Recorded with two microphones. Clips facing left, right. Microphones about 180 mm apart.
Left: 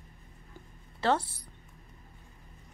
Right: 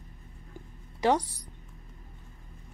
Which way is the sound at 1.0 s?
15° right (ahead or behind).